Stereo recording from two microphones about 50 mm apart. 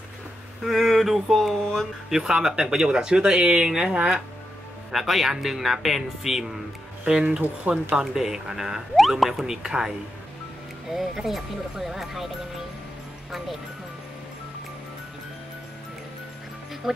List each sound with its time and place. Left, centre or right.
0.7 s speech: centre
2.1 s speech: centre
4.9 s speech: centre
7.1 s speech: centre
7.9 s speech: centre